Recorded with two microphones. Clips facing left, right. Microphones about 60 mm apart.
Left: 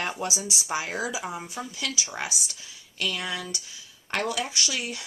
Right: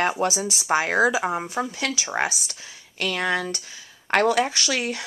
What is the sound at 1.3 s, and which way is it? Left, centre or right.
Speech, right.